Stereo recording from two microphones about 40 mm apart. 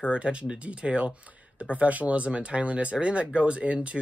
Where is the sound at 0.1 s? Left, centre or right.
Right.